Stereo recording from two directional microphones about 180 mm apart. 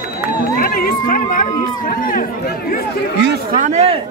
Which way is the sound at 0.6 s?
50° left (ahead or behind).